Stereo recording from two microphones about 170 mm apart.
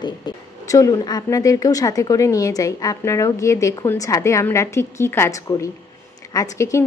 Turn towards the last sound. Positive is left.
turn(degrees=20)  # may be behind; listen again after turning